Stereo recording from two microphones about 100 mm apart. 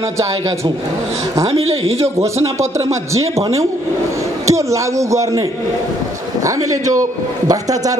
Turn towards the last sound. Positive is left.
turn(degrees=-35)  # may be behind; listen again after turning